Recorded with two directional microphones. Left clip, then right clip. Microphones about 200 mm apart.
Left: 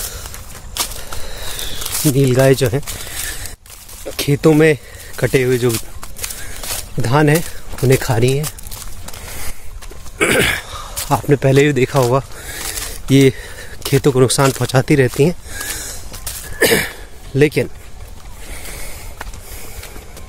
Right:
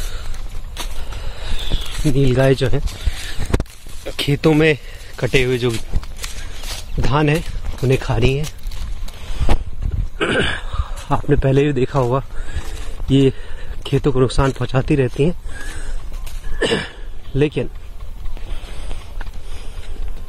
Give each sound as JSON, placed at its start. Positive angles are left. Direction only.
{"t": 1.3, "sound": "walk", "side_deg": 15}
{"t": 2.0, "sound": "speech", "side_deg": 10}
{"t": 4.0, "sound": "speech", "side_deg": 5}
{"t": 7.0, "sound": "speech", "side_deg": 20}
{"t": 10.1, "sound": "a sound", "side_deg": 10}
{"t": 13.1, "sound": "speech", "side_deg": 15}
{"t": 16.5, "sound": "a sound", "side_deg": 15}